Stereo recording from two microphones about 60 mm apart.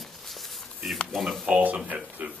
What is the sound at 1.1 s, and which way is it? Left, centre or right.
Speech, centre.